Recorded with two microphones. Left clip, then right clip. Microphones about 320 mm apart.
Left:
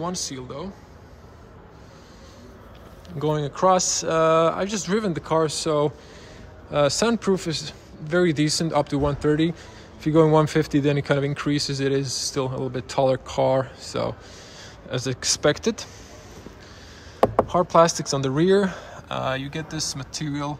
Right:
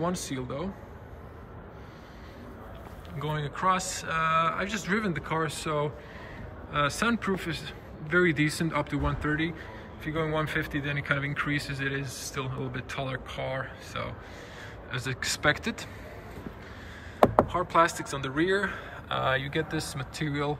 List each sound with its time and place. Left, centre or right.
0.0 s speech: centre
3.2 s speech: centre
17.5 s speech: centre